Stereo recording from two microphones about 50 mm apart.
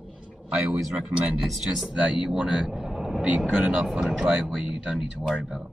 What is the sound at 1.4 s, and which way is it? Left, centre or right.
Speech, centre.